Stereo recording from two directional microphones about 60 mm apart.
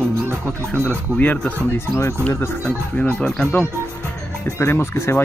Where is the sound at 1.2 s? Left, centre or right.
Left.